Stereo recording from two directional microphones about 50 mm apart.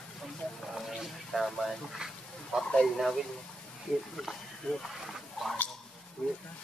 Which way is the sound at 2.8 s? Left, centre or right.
Centre.